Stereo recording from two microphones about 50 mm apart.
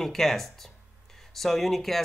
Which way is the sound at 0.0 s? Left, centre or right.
Centre.